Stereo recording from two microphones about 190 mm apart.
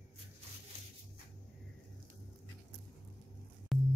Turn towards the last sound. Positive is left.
turn(degrees=0)  # may be behind; listen again after turning